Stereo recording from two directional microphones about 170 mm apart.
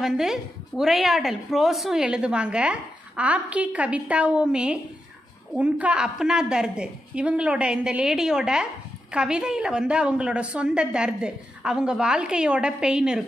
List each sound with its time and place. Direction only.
0.0 s a woman's voice: centre (ahead or behind)